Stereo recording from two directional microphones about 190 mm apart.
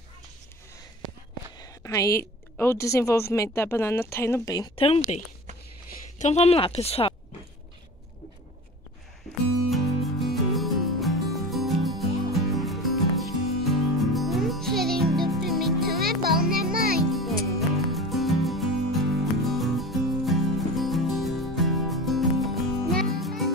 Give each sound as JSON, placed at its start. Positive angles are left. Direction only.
{"t": 1.6, "sound": "a woman's voice", "side_deg": 20}
{"t": 10.2, "sound": "music", "side_deg": 0}
{"t": 15.9, "sound": "music", "side_deg": -50}
{"t": 17.1, "sound": "music", "side_deg": 0}